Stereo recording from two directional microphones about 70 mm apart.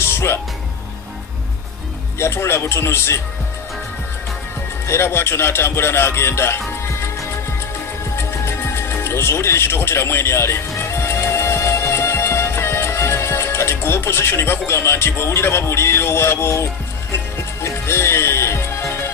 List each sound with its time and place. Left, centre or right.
0.0 s music: left
2.1 s speech: left
4.8 s speech: left
8.2 s music: left